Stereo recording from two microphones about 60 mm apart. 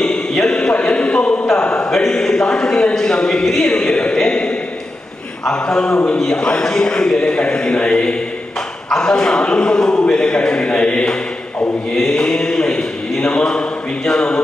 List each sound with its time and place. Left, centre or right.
0.0 s a sound: centre
1.6 s mantra: centre
1.9 s a man's voice: centre
11.9 s mantra: centre